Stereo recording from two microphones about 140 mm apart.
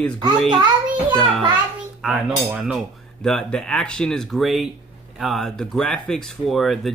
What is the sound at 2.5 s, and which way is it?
Cutlery, 5° right (ahead or behind).